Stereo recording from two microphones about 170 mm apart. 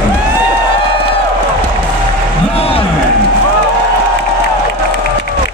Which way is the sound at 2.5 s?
35° left (ahead or behind).